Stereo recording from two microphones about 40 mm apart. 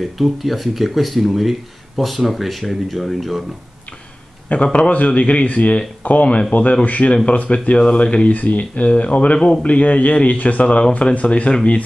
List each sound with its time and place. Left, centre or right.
0.2 s speech: centre
4.7 s speech: left
9.7 s speech: left